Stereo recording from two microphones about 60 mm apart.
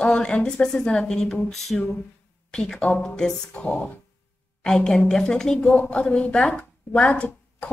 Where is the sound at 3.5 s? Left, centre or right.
Left.